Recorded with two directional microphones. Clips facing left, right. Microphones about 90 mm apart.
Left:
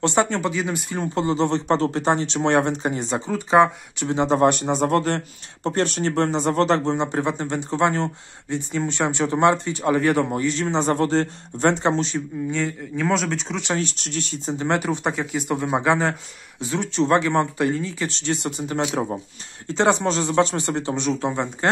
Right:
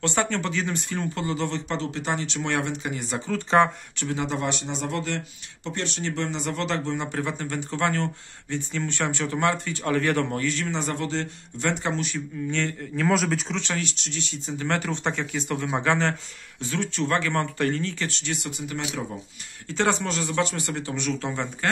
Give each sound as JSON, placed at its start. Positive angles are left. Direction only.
{"t": 0.0, "sound": "speech", "side_deg": 20}
{"t": 4.1, "sound": "speech", "side_deg": 30}
{"t": 4.4, "sound": "speech", "side_deg": 50}
{"t": 12.4, "sound": "speech", "side_deg": 10}
{"t": 13.7, "sound": "speech", "side_deg": 40}
{"t": 14.6, "sound": "speech", "side_deg": 15}
{"t": 18.1, "sound": "speech", "side_deg": 35}
{"t": 19.7, "sound": "speech", "side_deg": 25}